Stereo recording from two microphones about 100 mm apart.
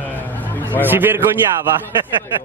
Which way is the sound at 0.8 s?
20° right (ahead or behind).